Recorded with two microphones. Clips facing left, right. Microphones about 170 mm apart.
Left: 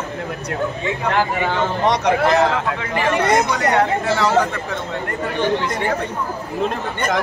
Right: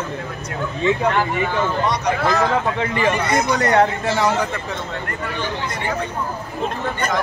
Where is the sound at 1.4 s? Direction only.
75° left (ahead or behind).